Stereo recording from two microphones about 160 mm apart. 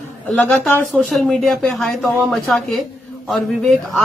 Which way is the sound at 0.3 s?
5° left (ahead or behind).